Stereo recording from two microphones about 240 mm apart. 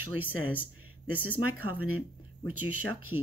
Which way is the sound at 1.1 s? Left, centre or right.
Left.